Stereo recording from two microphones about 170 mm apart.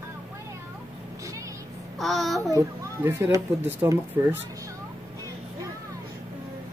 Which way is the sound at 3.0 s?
15° right (ahead or behind).